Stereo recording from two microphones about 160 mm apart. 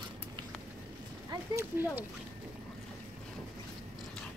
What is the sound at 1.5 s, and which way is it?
Speech, 15° right (ahead or behind).